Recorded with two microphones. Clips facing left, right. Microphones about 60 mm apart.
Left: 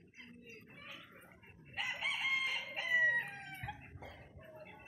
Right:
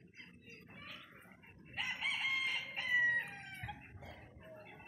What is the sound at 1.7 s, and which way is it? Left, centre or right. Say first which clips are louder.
Chicken: left 1 dB; centre.